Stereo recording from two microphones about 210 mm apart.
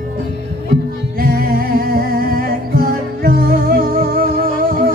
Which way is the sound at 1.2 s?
45° right (ahead or behind).